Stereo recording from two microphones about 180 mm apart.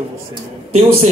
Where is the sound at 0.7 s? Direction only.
35° right (ahead or behind).